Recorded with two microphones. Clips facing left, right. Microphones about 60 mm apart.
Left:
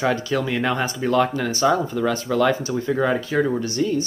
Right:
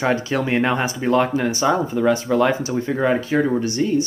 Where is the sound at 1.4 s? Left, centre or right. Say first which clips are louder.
Right 1 dB; centre.